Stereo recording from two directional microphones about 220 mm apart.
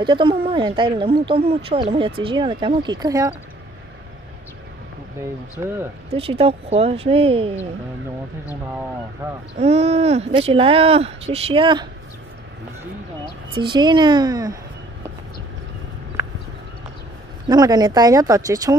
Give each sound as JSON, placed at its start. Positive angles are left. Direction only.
{"t": 0.0, "sound": "speech", "side_deg": -20}
{"t": 6.1, "sound": "speech", "side_deg": -25}
{"t": 9.2, "sound": "speech", "side_deg": -10}
{"t": 9.6, "sound": "speech", "side_deg": -30}
{"t": 13.6, "sound": "speech", "side_deg": -20}
{"t": 17.5, "sound": "speech", "side_deg": -20}